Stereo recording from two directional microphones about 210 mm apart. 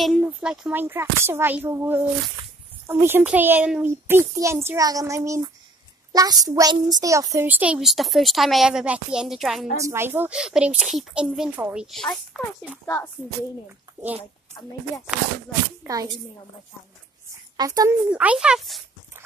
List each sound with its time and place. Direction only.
0.0 s a child's voice: centre (ahead or behind)
9.8 s a child's voice: 10° right (ahead or behind); by 13.1 s 10° left (ahead or behind)
15.8 s a child's voice: 15° right (ahead or behind)
17.6 s a child's voice: 15° right (ahead or behind)